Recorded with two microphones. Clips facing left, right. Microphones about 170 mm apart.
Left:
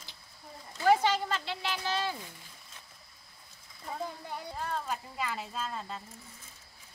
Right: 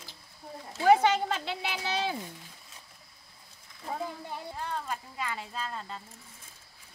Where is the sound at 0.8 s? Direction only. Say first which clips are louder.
Right 3 dB; 55° right (ahead or behind).